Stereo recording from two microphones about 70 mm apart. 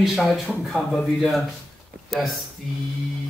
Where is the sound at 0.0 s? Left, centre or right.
Centre.